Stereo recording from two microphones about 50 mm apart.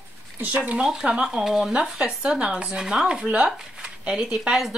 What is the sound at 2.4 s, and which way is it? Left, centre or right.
Speech, right.